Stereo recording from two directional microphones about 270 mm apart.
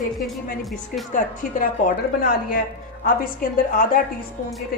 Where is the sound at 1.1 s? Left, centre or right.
Left.